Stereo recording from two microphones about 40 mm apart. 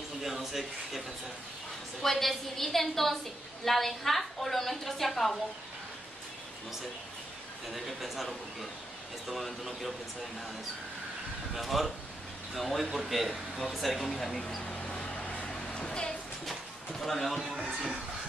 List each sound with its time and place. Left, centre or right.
0.2 s a sound: centre
2.0 s a woman's voice: centre
7.7 s a woman's voice: centre
11.5 s a woman's voice: centre
14.7 s a sound: left
15.6 s music: centre
17.0 s a woman's voice: centre